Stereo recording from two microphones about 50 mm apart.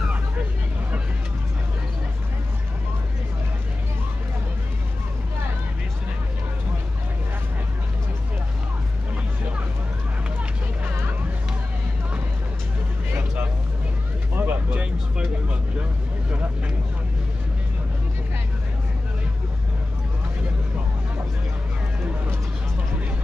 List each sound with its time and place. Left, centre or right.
14.3 s vehicle: right
14.7 s vehicle: right